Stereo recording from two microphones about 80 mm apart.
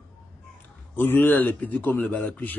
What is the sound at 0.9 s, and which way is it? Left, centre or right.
A man's voice, left.